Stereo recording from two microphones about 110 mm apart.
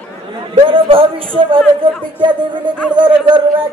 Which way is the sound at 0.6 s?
50° right (ahead or behind).